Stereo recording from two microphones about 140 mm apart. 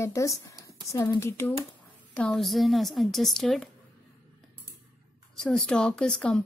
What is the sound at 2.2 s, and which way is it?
A woman's voice, 5° left (ahead or behind).